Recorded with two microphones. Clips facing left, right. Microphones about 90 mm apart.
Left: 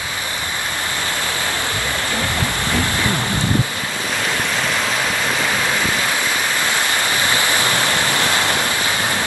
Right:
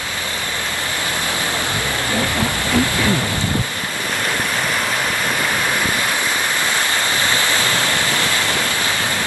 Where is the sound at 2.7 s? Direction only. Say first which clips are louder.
Right 4 dB; 20° left (ahead or behind).